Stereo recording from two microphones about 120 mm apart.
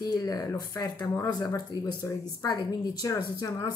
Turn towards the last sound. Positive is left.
turn(degrees=30)  # may be behind; listen again after turning